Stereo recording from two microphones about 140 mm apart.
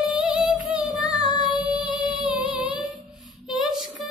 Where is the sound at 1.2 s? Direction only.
35° left (ahead or behind).